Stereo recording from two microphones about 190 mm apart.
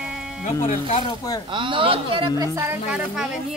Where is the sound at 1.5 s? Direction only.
25° right (ahead or behind).